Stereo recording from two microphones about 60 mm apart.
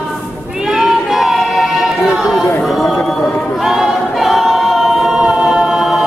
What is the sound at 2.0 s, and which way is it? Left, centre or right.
Chatter, centre.